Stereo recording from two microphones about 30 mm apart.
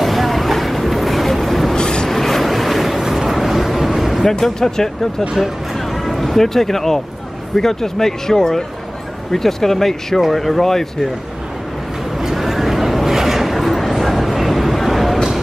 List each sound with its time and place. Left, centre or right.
0.0 s boat: centre
1.8 s a sound: left
2.0 s vehicle: centre
3.0 s vehicle: centre
4.2 s speech: centre
5.9 s speech: centre
12.4 s a sound: centre